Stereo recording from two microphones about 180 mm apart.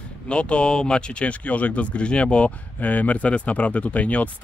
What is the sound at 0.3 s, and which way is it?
Speech, 5° left (ahead or behind).